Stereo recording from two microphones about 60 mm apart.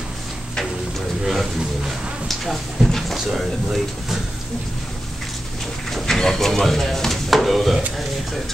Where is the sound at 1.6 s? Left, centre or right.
Centre.